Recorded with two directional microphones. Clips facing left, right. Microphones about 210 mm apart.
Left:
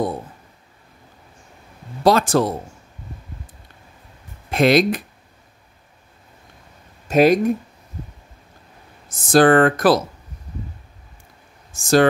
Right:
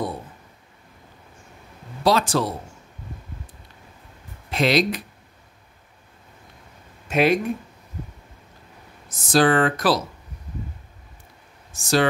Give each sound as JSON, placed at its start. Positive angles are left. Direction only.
{"t": 2.0, "sound": "speech", "side_deg": 50}
{"t": 4.5, "sound": "speech", "side_deg": 50}
{"t": 7.1, "sound": "speech", "side_deg": 40}
{"t": 9.1, "sound": "speech", "side_deg": 50}
{"t": 11.7, "sound": "speech", "side_deg": 50}